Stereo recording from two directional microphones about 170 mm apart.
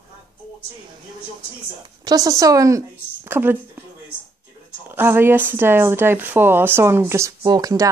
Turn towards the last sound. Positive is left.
turn(degrees=-20)  # may be behind; listen again after turning